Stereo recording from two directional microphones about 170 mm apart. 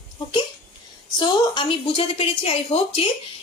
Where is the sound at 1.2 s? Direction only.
30° left (ahead or behind).